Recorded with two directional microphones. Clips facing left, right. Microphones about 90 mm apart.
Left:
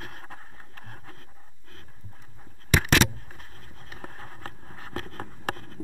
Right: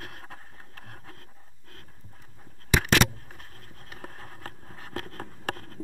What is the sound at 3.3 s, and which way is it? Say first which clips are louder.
Patter: left 1 dB; 25° left (ahead or behind).